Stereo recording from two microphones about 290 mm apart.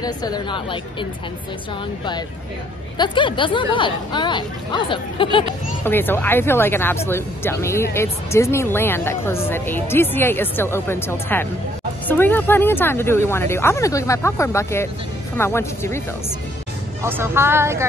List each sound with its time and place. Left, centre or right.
0.0 s speech: centre
3.0 s speech: centre
17.0 s speech: centre